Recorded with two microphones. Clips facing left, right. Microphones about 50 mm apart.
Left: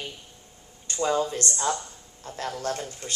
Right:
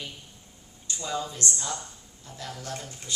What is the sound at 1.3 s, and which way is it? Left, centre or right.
Speech, left.